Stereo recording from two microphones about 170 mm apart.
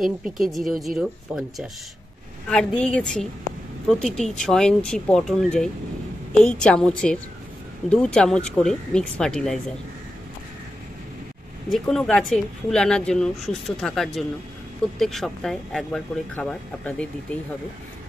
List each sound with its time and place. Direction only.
0.0 s speech: centre (ahead or behind)
11.7 s speech: centre (ahead or behind)